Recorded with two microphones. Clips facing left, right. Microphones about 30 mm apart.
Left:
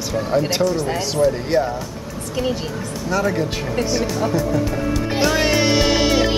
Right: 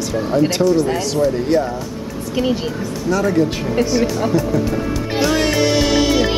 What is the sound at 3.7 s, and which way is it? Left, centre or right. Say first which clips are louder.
Music: right 2 dB; centre.